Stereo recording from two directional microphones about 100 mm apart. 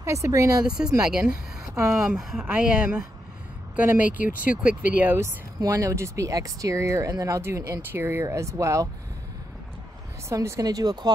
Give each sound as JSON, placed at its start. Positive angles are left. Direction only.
{"t": 0.0, "sound": "speech", "side_deg": -30}
{"t": 0.7, "sound": "speech", "side_deg": -5}
{"t": 5.6, "sound": "speech", "side_deg": -35}
{"t": 10.3, "sound": "speech", "side_deg": -30}